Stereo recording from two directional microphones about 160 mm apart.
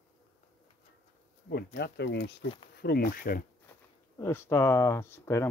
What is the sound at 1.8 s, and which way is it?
Speech, 90° left.